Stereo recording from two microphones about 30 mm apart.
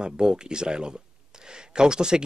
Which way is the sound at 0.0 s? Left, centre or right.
Right.